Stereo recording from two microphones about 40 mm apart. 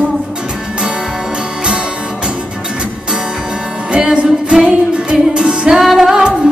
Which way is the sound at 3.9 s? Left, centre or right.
Right.